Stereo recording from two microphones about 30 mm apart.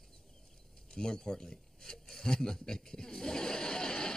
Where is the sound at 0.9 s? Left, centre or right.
Centre.